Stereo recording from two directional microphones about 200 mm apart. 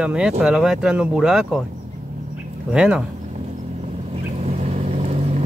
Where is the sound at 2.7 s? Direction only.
5° right (ahead or behind).